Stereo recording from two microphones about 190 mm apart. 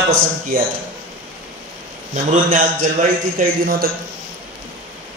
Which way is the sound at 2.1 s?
45° right (ahead or behind).